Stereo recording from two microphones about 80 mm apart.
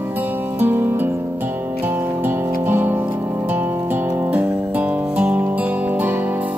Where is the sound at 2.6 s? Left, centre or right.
Right.